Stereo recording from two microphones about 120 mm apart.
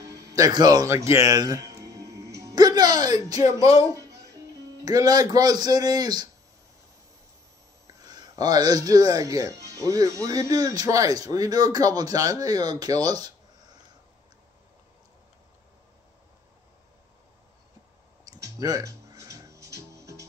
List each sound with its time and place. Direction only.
0.0 s a man's voice: 25° right (ahead or behind)
1.2 s music: 30° right (ahead or behind)
4.8 s speech: 30° right (ahead or behind)
7.8 s speech: 35° right (ahead or behind)
18.2 s music: 30° right (ahead or behind)